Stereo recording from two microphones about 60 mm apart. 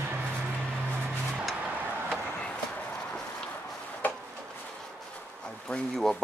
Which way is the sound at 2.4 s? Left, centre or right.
Centre.